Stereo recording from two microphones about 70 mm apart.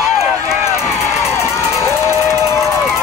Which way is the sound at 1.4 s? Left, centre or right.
Left.